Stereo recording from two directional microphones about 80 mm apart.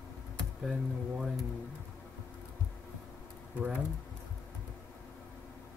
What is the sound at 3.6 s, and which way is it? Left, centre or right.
Speech, centre.